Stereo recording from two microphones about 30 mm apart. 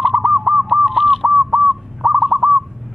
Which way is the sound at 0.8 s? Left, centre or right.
Centre.